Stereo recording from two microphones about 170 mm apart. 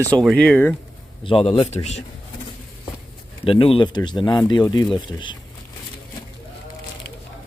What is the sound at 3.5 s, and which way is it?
Speech, 30° left (ahead or behind).